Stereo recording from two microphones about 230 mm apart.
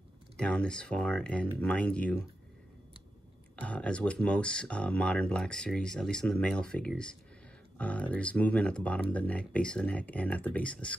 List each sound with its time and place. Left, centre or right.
0.4 s speech: centre
3.6 s speech: centre